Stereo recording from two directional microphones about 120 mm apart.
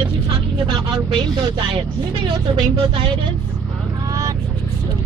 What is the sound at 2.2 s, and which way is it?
Speech, 50° right (ahead or behind).